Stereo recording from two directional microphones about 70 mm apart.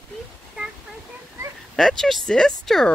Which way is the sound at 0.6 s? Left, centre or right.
Centre.